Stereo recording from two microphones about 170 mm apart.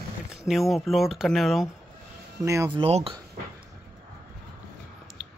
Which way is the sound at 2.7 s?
35° right (ahead or behind).